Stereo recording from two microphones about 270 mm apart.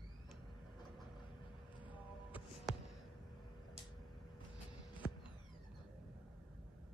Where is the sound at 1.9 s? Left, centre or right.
Centre.